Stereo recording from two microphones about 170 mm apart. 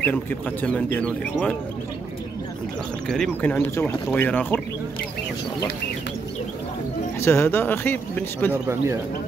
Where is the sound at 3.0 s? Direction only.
5° left (ahead or behind).